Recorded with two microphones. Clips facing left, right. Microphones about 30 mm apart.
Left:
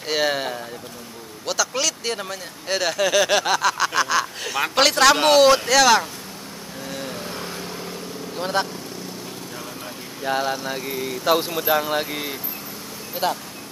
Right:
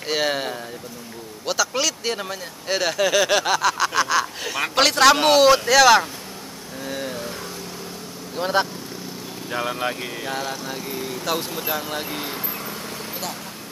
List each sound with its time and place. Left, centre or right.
0.0 s speech: centre
6.8 s vehicle: centre
8.4 s speech: centre
9.5 s speech: right
10.2 s speech: centre
13.2 s speech: left